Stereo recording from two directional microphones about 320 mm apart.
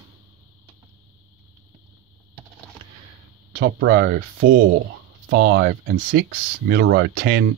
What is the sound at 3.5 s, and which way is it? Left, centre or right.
Speech, right.